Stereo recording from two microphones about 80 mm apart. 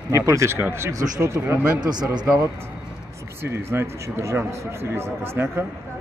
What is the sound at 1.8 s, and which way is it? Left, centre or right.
Speech, right.